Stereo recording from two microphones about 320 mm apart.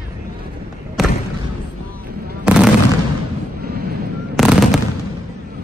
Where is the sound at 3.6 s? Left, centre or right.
Right.